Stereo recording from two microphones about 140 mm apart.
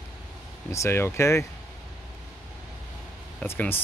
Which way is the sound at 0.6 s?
20° left (ahead or behind).